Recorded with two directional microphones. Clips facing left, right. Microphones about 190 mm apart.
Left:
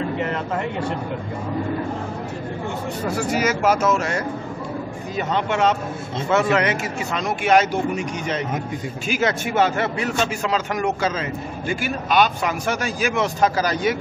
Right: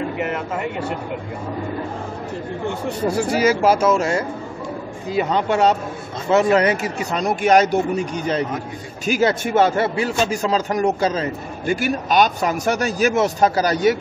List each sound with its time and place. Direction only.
0.2 s speech: 5° right (ahead or behind)
3.3 s a man's voice: 30° right (ahead or behind)
5.3 s a man's voice: 35° right (ahead or behind)